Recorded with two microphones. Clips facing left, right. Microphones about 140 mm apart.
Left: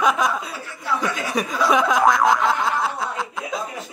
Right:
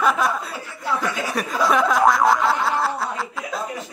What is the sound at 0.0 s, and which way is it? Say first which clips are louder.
Chuckle: even; 15° left (ahead or behind).